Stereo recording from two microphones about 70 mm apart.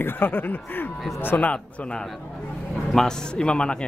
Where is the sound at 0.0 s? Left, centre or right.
Left.